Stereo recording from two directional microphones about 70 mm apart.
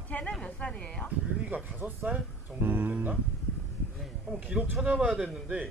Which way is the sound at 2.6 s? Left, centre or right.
Right.